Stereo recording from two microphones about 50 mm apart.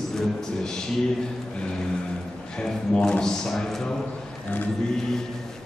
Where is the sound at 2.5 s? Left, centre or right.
Centre.